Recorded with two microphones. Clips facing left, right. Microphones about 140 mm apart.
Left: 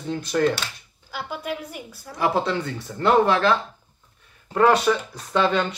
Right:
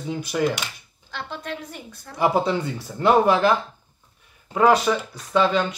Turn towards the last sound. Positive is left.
turn(degrees=0)  # may be behind; listen again after turning